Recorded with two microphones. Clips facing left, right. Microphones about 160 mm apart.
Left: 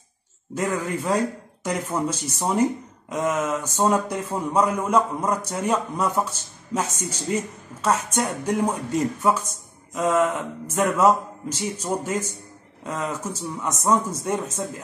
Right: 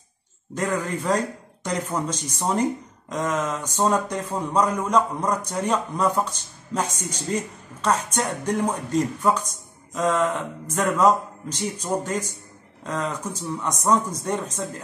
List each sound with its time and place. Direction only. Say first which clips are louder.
0.6 s speech: even; 10° left (ahead or behind)